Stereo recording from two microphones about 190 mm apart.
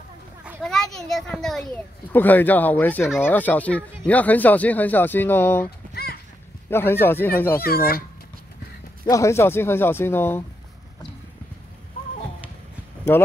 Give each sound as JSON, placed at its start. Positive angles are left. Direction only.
{"t": 0.6, "sound": "a child's voice", "side_deg": 0}
{"t": 6.7, "sound": "speech", "side_deg": 10}
{"t": 7.6, "sound": "speech", "side_deg": 50}
{"t": 9.0, "sound": "speech", "side_deg": 15}